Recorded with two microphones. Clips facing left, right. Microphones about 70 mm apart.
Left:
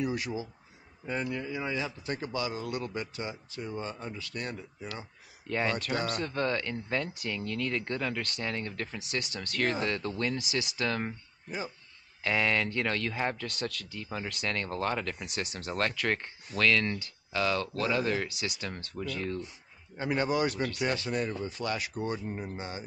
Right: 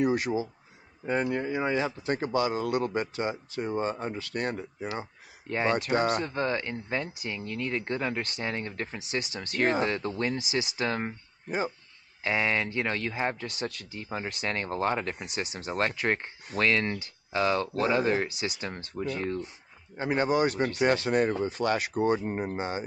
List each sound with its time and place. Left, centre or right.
0.0 s speech: right
5.5 s speech: centre
20.4 s speech: right
21.9 s speech: right